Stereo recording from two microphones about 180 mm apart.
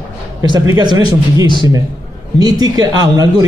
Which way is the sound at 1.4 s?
25° left (ahead or behind).